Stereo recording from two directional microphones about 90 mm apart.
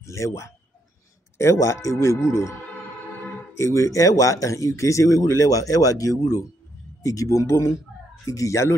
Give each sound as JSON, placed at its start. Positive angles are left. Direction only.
{"t": 0.0, "sound": "speech", "side_deg": 35}
{"t": 3.5, "sound": "speech", "side_deg": 35}